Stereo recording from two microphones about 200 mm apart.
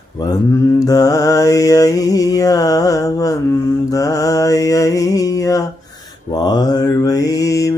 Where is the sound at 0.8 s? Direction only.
20° left (ahead or behind).